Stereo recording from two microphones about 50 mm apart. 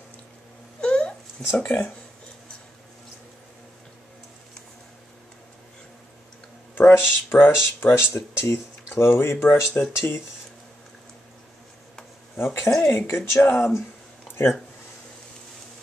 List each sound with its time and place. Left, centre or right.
0.7 s wail: centre
1.6 s speech: left
6.7 s speech: left
12.4 s speech: left
13.4 s speech: left